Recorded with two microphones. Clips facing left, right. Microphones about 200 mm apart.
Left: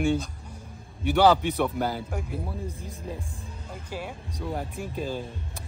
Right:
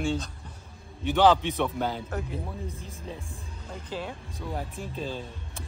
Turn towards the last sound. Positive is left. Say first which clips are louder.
# left 3 dB
turn(degrees=10)  # may be behind; listen again after turning